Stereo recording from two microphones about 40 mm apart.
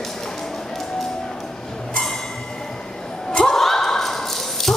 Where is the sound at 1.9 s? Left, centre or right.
Centre.